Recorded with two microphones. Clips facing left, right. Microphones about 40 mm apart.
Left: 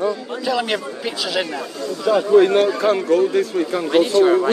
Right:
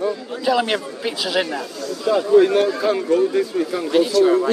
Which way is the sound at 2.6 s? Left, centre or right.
Left.